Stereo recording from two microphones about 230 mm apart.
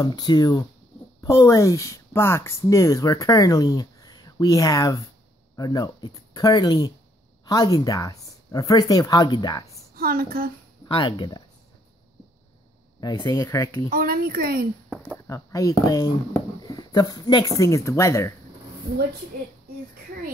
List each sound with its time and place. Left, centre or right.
0.0 s speech: centre
9.9 s a woman's voice: right
10.9 s speech: left
13.0 s speech: centre
13.8 s a woman's voice: right
14.9 s speech: centre